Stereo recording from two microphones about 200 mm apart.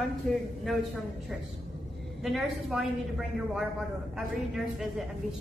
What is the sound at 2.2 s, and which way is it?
Speech, centre (ahead or behind).